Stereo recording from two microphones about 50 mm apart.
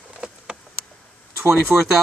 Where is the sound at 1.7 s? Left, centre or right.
Right.